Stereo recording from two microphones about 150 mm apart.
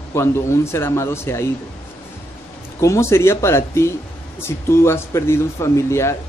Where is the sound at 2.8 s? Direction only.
20° left (ahead or behind).